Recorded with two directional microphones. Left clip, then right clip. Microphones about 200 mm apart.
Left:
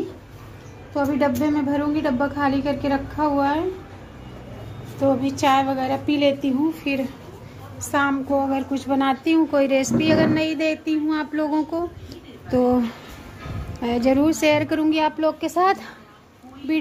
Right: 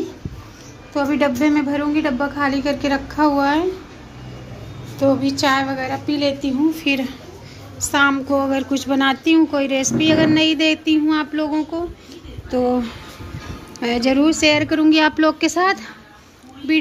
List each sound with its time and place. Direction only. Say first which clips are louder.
0.9 s speech: right 3 dB; 5° left (ahead or behind)
5.0 s speech: right 3 dB; 15° left (ahead or behind)
6.8 s a woman's voice: right 5 dB; centre (ahead or behind)
12.4 s speech: right 1 dB; 20° left (ahead or behind)
13.7 s a woman's voice: right 2 dB; centre (ahead or behind)
15.0 s a woman's voice: right 5 dB; 10° right (ahead or behind)
15.6 s speech: left 1 dB; 5° left (ahead or behind)